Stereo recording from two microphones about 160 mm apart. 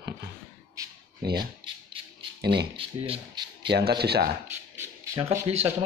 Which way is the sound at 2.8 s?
30° right (ahead or behind).